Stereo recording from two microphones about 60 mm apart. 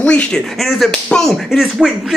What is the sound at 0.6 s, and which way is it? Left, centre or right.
Speech, centre.